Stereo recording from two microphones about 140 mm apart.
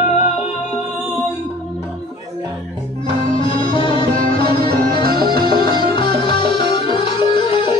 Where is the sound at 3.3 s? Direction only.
40° left (ahead or behind).